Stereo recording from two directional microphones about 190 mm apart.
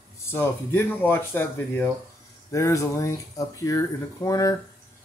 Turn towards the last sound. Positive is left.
turn(degrees=20)  # may be behind; listen again after turning